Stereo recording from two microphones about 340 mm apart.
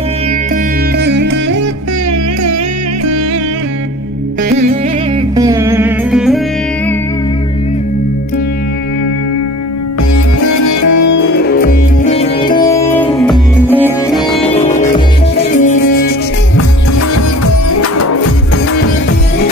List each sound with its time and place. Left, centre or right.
0.9 s music: right
5.3 s music: centre
10.1 s music: left
11.3 s music: left; by 14.4 s centre
14.5 s music: left
17.6 s music: left